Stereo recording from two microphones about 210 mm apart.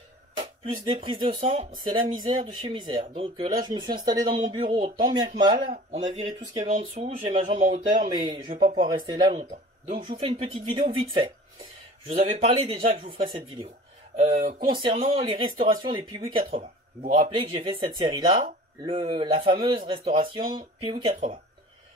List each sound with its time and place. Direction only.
0.7 s speech: 25° right (ahead or behind)
2.1 s speech: 20° right (ahead or behind)
8.5 s speech: 25° right (ahead or behind)
9.3 s speech: 35° right (ahead or behind)
14.3 s speech: 40° right (ahead or behind)
14.7 s speech: 25° right (ahead or behind)